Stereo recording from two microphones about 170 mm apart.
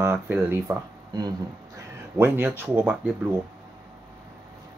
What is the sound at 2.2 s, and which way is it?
Speech, 10° right (ahead or behind).